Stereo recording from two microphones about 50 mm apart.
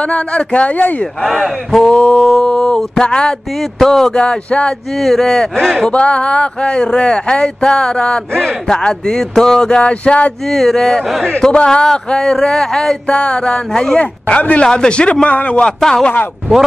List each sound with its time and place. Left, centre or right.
0.1 s speech: left
1.2 s speech: centre
1.8 s speech: centre
2.1 s a sound: centre
2.4 s a sound: centre
3.8 s speech: centre
4.1 s speech: centre
5.0 s speech: centre
5.9 s speech: left
10.5 s speech: centre
11.2 s speech: centre
14.3 s speech: left
15.8 s speech: centre